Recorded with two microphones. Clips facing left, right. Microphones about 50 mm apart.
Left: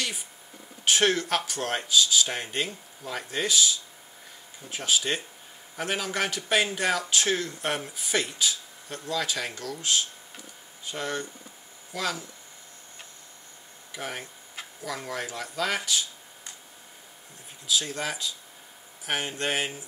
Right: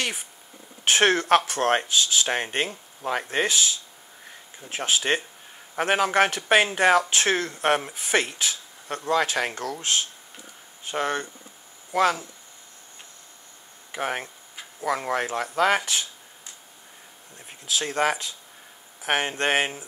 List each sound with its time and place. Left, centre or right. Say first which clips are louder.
0.8 s speech: right 4 dB; right
13.9 s speech: right 7 dB; right
17.5 s speech: right 1 dB; right